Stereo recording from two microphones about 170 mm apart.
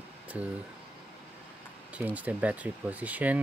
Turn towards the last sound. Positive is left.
turn(degrees=-10)  # may be behind; listen again after turning